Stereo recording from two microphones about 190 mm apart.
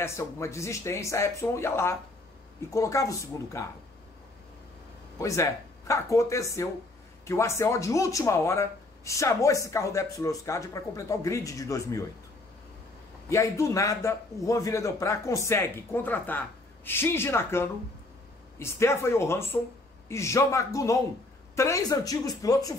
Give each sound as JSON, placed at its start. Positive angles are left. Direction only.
{"t": 0.0, "sound": "speech", "side_deg": 15}
{"t": 5.2, "sound": "speech", "side_deg": 15}
{"t": 13.3, "sound": "speech", "side_deg": 15}